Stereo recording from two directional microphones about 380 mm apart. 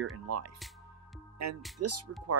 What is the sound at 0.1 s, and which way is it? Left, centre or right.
Speech, right.